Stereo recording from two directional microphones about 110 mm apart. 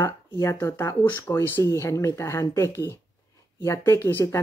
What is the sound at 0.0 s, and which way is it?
Speech, 25° left (ahead or behind).